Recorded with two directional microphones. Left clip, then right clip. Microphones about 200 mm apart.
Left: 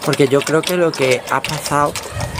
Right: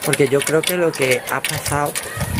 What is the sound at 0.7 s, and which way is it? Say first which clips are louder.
Speech: left 2 dB; 15° left (ahead or behind).